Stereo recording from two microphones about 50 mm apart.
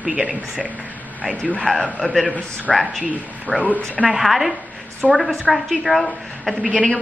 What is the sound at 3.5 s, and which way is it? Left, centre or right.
Speech, left.